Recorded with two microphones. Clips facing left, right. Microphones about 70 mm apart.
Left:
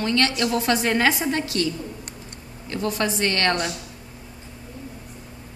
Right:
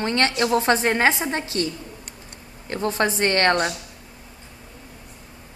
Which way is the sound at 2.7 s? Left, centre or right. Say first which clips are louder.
Right 2 dB; right.